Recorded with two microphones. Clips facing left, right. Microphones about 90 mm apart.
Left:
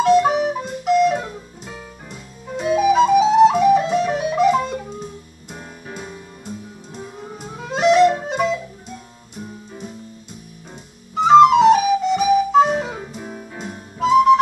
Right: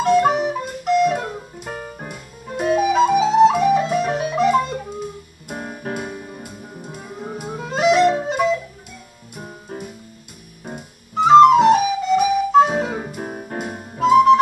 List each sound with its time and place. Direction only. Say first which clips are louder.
0.0 s music: left 1 dB; centre (ahead or behind)
1.2 s music: right 3 dB; 55° right (ahead or behind)
2.9 s flute: left 4 dB; centre (ahead or behind)
4.2 s music: even; centre (ahead or behind)
5.5 s music: right 7 dB; 55° right (ahead or behind)
7.4 s music: left 1 dB; 5° right (ahead or behind)
9.4 s music: right 1 dB; 55° right (ahead or behind)
11.1 s flute: right 1 dB; centre (ahead or behind)
12.7 s music: right 2 dB; 50° right (ahead or behind)
13.9 s music: right 1 dB; centre (ahead or behind)